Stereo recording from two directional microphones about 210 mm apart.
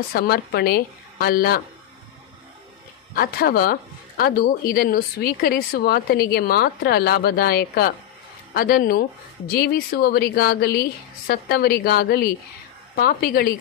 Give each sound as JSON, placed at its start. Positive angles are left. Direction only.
{"t": 0.1, "sound": "speech", "side_deg": 50}
{"t": 3.2, "sound": "speech", "side_deg": 45}